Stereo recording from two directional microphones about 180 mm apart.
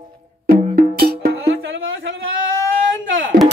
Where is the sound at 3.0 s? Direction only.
90° right.